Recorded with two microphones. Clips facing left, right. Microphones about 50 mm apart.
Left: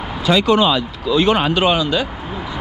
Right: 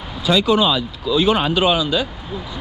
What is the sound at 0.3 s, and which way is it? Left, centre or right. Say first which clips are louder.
Speech: left 2 dB; left.